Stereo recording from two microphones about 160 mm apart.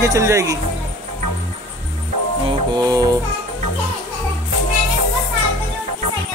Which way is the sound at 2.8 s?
25° right (ahead or behind).